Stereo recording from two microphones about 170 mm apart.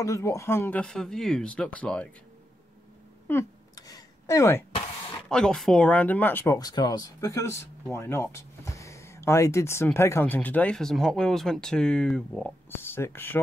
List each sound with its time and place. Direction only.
0.0 s speech: 20° left (ahead or behind)
3.3 s a sound: 20° left (ahead or behind)
5.3 s speech: 5° left (ahead or behind)
12.7 s speech: 15° left (ahead or behind)